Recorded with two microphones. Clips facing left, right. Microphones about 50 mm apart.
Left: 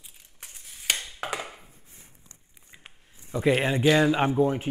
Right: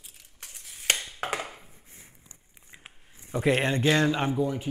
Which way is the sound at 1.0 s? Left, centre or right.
Right.